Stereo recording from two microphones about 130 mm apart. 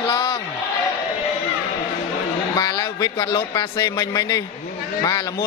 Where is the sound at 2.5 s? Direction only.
30° left (ahead or behind).